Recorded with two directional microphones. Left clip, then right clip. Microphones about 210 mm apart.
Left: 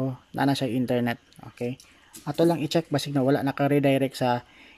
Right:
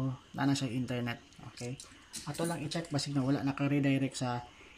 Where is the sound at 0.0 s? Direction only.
40° left (ahead or behind).